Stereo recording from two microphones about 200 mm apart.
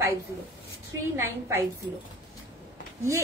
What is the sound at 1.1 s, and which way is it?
Speech, 10° right (ahead or behind).